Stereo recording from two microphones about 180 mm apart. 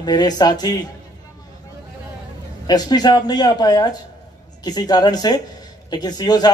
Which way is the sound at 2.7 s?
20° left (ahead or behind).